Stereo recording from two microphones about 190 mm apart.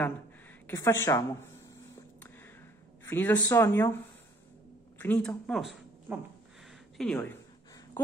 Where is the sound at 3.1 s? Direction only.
10° left (ahead or behind).